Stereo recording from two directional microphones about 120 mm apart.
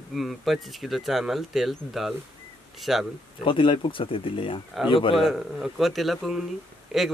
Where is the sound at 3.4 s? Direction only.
45° left (ahead or behind).